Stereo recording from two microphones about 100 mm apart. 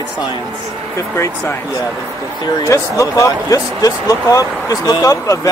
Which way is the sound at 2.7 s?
30° left (ahead or behind).